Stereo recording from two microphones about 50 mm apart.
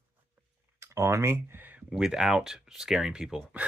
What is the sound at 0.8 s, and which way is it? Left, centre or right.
Speech, right.